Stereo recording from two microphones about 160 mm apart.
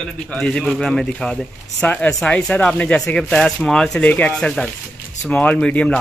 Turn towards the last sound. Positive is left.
turn(degrees=5)  # may be behind; listen again after turning